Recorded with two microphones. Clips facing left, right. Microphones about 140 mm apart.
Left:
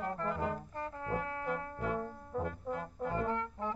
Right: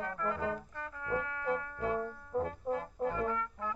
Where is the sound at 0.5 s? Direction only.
35° left (ahead or behind).